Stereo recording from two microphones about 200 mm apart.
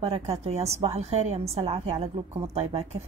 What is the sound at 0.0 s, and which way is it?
A woman's voice, 30° right (ahead or behind).